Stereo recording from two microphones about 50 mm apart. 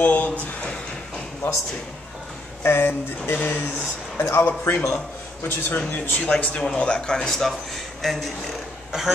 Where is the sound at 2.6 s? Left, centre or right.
Left.